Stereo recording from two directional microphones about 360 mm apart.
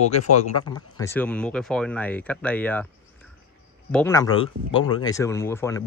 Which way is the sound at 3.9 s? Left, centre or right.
Centre.